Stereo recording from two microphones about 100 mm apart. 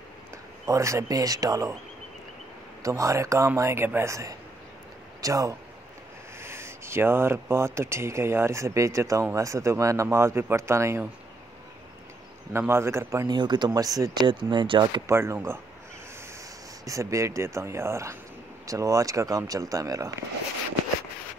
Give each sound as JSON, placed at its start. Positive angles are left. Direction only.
{"t": 0.7, "sound": "speech", "side_deg": -30}
{"t": 2.8, "sound": "speech", "side_deg": -30}
{"t": 12.5, "sound": "speech", "side_deg": -25}
{"t": 13.3, "sound": "speech", "side_deg": -45}
{"t": 15.0, "sound": "speech", "side_deg": -25}
{"t": 16.8, "sound": "speech", "side_deg": -30}